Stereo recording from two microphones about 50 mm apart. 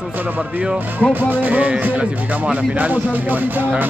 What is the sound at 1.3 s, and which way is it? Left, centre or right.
Speech, right.